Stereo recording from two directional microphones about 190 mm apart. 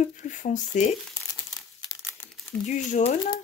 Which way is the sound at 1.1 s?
20° left (ahead or behind).